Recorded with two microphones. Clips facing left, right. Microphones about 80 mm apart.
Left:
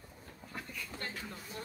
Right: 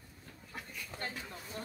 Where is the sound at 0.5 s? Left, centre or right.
Right.